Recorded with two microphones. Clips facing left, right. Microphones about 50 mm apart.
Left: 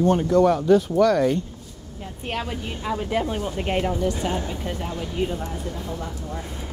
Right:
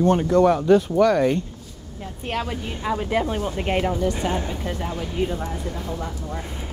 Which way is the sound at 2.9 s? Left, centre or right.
Right.